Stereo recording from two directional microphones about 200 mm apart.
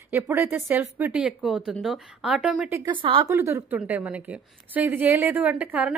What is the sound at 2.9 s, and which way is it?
Speech, 25° right (ahead or behind).